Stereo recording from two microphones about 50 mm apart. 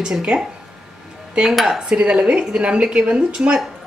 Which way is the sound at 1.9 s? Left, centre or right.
Right.